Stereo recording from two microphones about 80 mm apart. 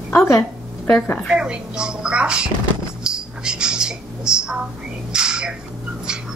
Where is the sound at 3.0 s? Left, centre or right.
Centre.